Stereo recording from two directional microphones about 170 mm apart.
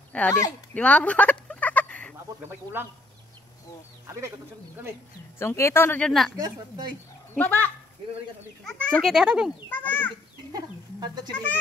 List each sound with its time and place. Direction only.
0.1 s speech: 5° left (ahead or behind)
0.7 s a sound: 5° left (ahead or behind)
5.4 s speech: 15° left (ahead or behind)
6.3 s a woman's voice: 20° right (ahead or behind)
7.3 s speech: 10° left (ahead or behind)
8.6 s a child's voice: 5° left (ahead or behind)
9.7 s speech: 10° left (ahead or behind)